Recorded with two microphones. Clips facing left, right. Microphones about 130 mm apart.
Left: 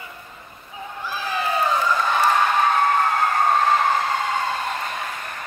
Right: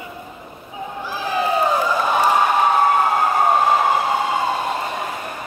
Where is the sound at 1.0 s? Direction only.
15° right (ahead or behind).